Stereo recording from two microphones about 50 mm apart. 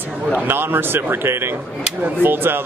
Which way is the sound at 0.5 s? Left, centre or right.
Right.